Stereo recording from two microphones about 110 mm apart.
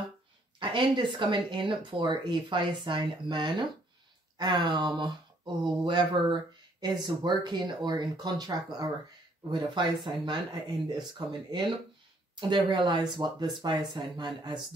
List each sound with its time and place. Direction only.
0.6 s speech: 45° right (ahead or behind)